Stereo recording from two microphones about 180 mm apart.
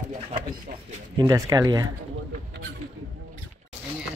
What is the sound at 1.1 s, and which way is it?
Speech, 20° right (ahead or behind).